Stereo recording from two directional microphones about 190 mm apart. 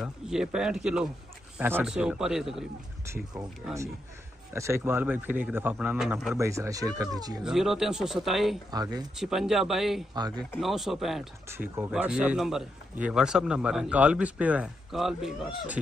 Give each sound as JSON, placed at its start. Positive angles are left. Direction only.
{"t": 0.0, "sound": "a man's voice", "side_deg": -5}
{"t": 4.6, "sound": "speech", "side_deg": -15}
{"t": 6.3, "sound": "speech", "side_deg": -15}
{"t": 7.4, "sound": "a man's voice", "side_deg": 0}
{"t": 8.7, "sound": "speech", "side_deg": -20}
{"t": 9.1, "sound": "a man's voice", "side_deg": 0}
{"t": 10.1, "sound": "speech", "side_deg": -20}
{"t": 10.6, "sound": "a man's voice", "side_deg": 0}
{"t": 11.4, "sound": "a man's voice", "side_deg": -15}